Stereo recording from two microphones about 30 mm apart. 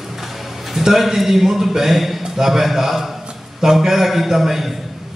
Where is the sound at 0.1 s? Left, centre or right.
Centre.